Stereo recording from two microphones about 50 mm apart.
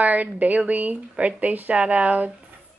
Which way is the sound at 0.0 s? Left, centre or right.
Right.